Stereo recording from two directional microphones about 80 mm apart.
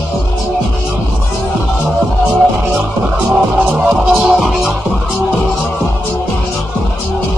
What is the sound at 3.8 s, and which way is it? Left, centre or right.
Music, centre.